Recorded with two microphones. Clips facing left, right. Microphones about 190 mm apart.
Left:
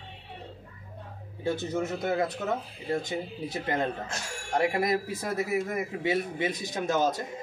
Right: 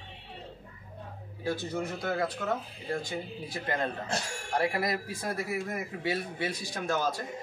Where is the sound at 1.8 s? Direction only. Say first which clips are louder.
Left 4 dB; 20° left (ahead or behind).